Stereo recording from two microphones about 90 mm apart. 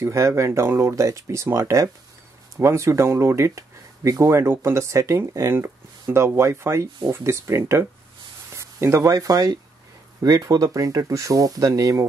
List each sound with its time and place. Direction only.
0.0 s speech: 30° right (ahead or behind)